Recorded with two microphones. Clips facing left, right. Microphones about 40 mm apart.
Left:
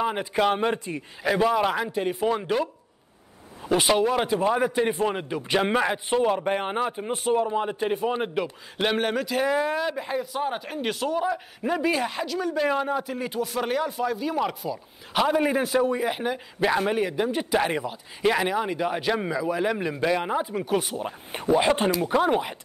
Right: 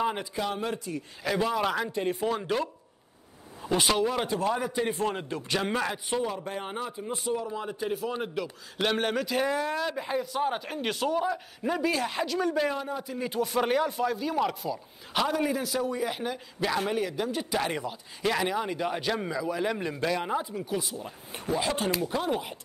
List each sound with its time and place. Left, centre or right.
0.0 s speech: centre
0.3 s a man's voice: left
1.2 s speech: centre
6.2 s a man's voice: left
8.8 s speech: centre
9.5 s speech: left
9.8 s speech: centre
12.1 s speech: centre
12.7 s speech: left
13.3 s speech: centre
15.2 s speech: left
15.5 s speech: left
20.5 s a man's voice: left